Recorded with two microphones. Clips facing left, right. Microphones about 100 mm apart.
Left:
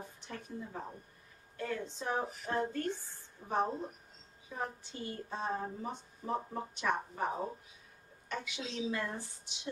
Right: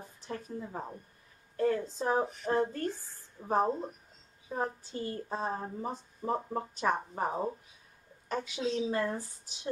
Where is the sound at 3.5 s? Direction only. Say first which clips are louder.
Right 5 dB; 35° right (ahead or behind).